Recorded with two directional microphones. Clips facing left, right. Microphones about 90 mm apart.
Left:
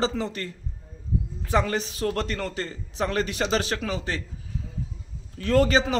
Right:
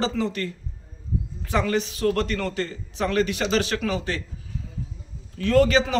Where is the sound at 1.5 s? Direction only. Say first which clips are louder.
Right 1 dB; 30° left (ahead or behind).